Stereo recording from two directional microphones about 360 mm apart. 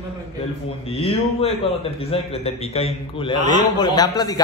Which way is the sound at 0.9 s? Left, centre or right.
Centre.